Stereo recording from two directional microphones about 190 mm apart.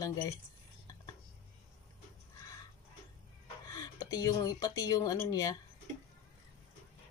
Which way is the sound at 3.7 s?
20° left (ahead or behind).